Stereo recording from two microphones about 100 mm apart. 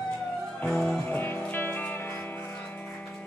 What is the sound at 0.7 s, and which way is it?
Music, 5° left (ahead or behind).